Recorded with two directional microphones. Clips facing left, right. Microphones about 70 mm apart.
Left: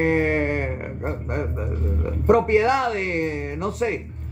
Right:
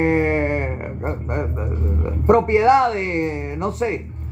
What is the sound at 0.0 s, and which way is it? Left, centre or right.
Speech, right.